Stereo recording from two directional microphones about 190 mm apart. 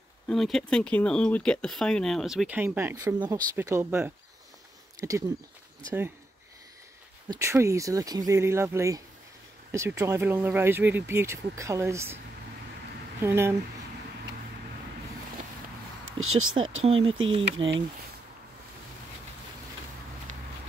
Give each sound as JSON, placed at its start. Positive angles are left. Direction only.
{"t": 0.3, "sound": "speech", "side_deg": 0}
{"t": 7.2, "sound": "speech", "side_deg": -15}
{"t": 13.2, "sound": "speech", "side_deg": -15}
{"t": 16.1, "sound": "a sound", "side_deg": -90}
{"t": 16.8, "sound": "speech", "side_deg": -30}